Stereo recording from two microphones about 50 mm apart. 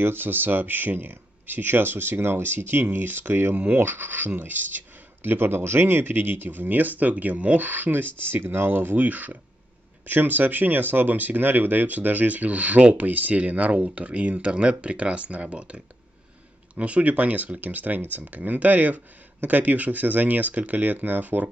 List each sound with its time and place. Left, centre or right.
0.0 s speech: right